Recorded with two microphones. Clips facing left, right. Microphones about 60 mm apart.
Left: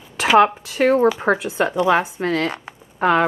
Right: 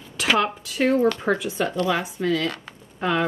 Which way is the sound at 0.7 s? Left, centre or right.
Left.